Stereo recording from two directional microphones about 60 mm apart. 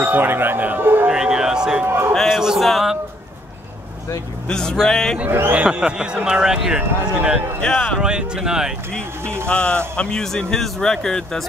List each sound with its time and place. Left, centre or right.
0.0 s speech: right
1.0 s a sound: centre
1.9 s speech: right
2.2 s speech: centre
4.5 s speech: centre
5.7 s a man's voice: centre
7.6 s speech: centre
8.0 s a man's voice: centre
9.2 s speech: right
9.5 s speech: centre